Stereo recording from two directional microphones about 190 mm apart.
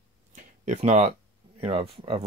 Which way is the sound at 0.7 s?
35° right (ahead or behind).